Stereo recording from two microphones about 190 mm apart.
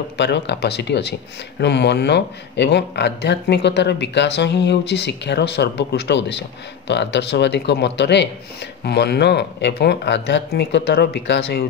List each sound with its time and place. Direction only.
0.2 s speech: 65° left (ahead or behind)